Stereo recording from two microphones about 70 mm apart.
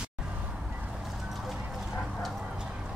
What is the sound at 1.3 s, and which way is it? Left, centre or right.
Clip-clop, centre.